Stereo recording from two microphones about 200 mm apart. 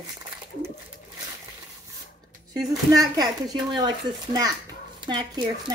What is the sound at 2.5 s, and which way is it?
Speech, 20° right (ahead or behind).